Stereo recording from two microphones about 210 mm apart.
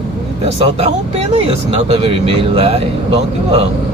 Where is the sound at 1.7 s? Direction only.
30° right (ahead or behind).